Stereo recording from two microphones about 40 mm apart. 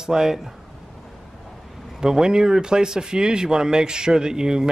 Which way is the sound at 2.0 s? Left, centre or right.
Centre.